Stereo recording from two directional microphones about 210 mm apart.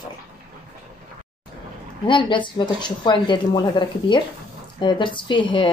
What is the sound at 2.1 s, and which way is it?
Speech, 25° left (ahead or behind).